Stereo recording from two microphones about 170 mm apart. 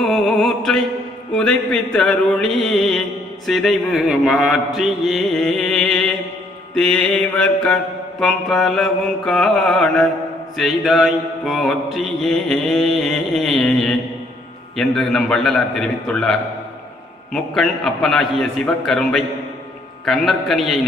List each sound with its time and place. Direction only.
0.0 s mantra: centre (ahead or behind)